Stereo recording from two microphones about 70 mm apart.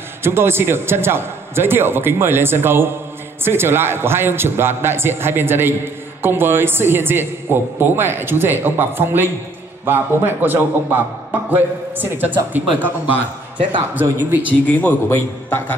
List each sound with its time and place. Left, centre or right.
0.2 s a man's voice: right
14.7 s a man's voice: left